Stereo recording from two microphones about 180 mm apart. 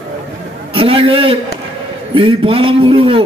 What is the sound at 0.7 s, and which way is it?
A man's voice, 30° right (ahead or behind).